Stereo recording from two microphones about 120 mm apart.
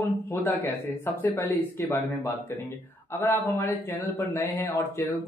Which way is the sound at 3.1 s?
20° left (ahead or behind).